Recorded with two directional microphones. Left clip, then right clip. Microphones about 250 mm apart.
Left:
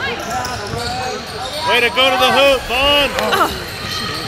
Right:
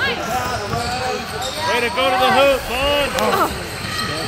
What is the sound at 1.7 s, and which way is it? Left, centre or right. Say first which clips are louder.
Speech: left 5 dB; left.